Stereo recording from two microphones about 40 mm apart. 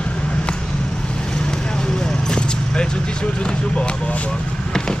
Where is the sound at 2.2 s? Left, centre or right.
Centre.